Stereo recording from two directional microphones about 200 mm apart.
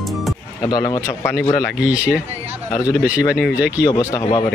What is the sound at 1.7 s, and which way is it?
Speech, 5° right (ahead or behind).